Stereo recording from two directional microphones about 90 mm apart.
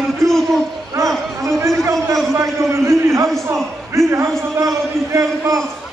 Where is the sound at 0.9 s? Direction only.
35° right (ahead or behind).